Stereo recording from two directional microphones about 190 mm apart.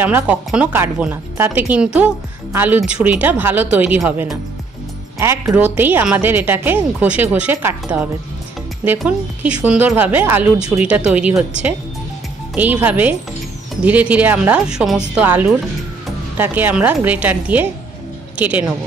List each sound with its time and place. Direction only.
0.0 s speech: 10° right (ahead or behind)